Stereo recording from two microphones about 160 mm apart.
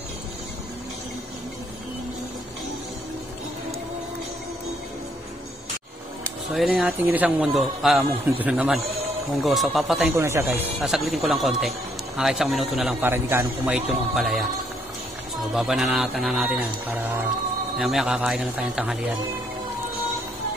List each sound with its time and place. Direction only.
6.5 s a man's voice: 5° right (ahead or behind)
10.1 s a man's voice: 15° right (ahead or behind)
10.8 s speech: centre (ahead or behind)
13.0 s a man's voice: 15° right (ahead or behind)
15.5 s speech: centre (ahead or behind)